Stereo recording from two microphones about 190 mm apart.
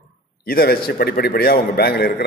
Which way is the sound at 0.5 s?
55° left (ahead or behind).